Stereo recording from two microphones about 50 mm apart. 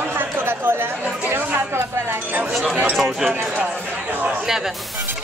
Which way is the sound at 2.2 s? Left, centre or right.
Right.